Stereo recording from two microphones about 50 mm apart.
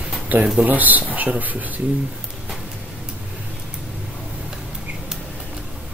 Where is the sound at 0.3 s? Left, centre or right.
Right.